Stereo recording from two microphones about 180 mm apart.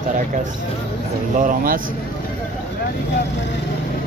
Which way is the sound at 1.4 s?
50° right (ahead or behind).